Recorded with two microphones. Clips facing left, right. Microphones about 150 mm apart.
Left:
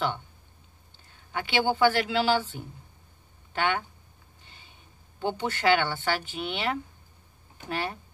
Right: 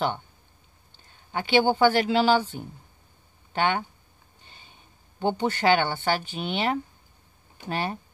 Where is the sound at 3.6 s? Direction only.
30° right (ahead or behind).